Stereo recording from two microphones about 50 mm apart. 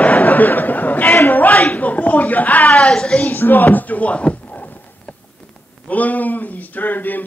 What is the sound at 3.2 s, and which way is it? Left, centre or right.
Speech, left.